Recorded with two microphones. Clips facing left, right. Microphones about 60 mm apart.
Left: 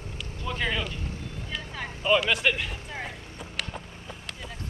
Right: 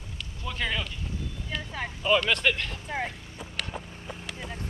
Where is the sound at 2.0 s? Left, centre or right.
Centre.